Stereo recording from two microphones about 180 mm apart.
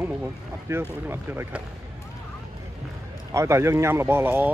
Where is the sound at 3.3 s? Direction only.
15° right (ahead or behind).